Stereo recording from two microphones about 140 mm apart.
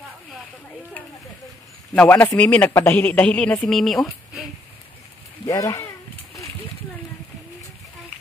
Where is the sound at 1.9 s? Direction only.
10° left (ahead or behind).